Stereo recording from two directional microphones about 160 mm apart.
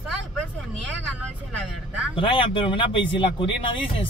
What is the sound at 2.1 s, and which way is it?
Speech, 35° left (ahead or behind).